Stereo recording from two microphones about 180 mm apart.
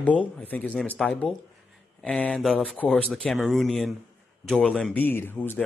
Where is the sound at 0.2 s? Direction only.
10° left (ahead or behind).